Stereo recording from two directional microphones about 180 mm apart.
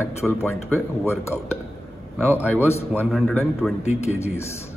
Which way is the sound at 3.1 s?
Centre (ahead or behind).